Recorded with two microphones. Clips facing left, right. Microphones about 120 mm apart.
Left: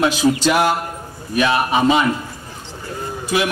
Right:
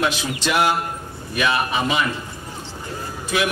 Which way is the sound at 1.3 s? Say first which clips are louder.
Left 5 dB; 30° left (ahead or behind).